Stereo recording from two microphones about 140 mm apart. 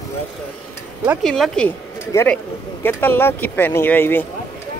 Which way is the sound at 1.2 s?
5° left (ahead or behind).